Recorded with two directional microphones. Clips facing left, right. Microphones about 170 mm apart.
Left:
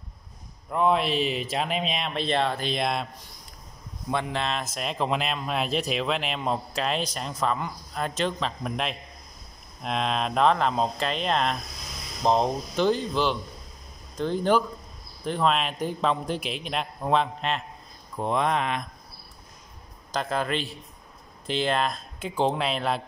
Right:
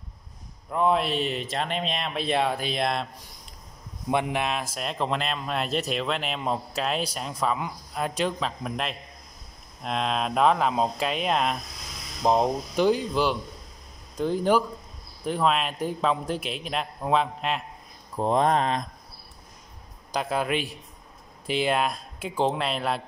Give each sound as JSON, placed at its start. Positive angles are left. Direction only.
{"t": 0.7, "sound": "speech", "side_deg": 0}
{"t": 4.1, "sound": "speech", "side_deg": -15}
{"t": 4.7, "sound": "speech", "side_deg": 0}
{"t": 18.1, "sound": "mantra", "side_deg": -35}
{"t": 20.1, "sound": "speech", "side_deg": -5}